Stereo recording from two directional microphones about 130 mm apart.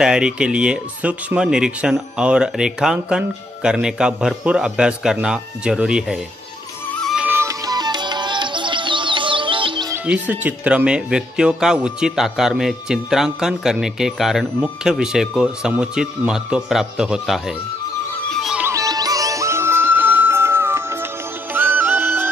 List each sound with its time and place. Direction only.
0.0 s speech: 5° right (ahead or behind)
7.2 s music: 15° right (ahead or behind)
7.4 s music: 30° right (ahead or behind)
10.0 s speech: 10° right (ahead or behind)
18.3 s music: centre (ahead or behind)
18.6 s music: 25° right (ahead or behind)